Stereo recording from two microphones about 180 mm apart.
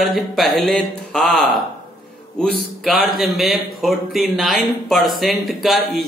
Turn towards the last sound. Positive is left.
turn(degrees=0)  # may be behind; listen again after turning